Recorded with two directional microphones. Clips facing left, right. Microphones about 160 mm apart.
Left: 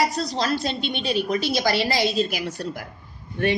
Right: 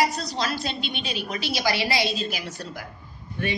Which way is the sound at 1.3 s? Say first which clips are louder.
Left 1 dB; 45° left (ahead or behind).